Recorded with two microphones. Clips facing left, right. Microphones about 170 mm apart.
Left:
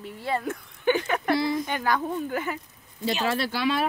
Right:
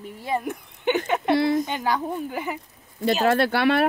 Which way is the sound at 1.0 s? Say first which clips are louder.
Right 3 dB; 20° right (ahead or behind).